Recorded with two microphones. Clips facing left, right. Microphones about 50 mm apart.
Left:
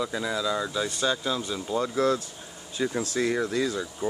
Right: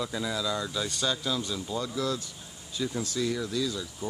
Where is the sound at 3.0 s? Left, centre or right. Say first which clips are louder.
Left 5 dB; left.